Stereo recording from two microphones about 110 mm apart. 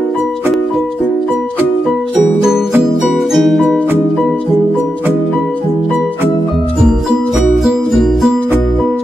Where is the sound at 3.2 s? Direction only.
Centre (ahead or behind).